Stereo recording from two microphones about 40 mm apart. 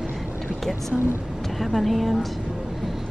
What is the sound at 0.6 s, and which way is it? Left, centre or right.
Speech, centre.